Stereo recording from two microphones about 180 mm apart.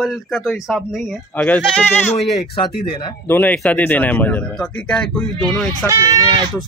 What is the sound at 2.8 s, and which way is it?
Speech, 30° left (ahead or behind).